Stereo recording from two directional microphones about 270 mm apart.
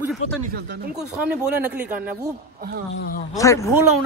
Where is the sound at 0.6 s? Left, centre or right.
Right.